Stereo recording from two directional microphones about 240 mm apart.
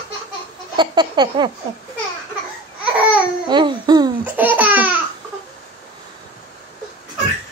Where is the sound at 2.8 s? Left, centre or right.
Centre.